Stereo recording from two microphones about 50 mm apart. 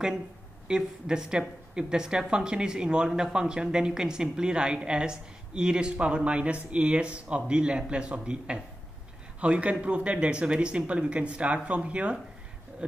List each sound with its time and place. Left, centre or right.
0.7 s speech: centre